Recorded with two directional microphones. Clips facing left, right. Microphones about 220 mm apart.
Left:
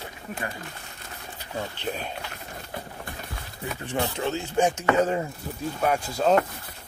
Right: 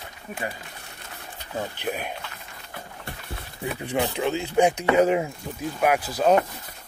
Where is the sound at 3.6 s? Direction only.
15° right (ahead or behind).